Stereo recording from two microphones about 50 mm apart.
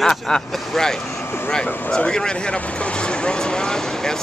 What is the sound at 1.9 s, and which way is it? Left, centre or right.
Speech, centre.